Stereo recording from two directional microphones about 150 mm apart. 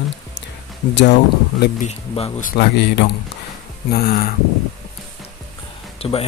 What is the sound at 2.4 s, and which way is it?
Speech, 90° left.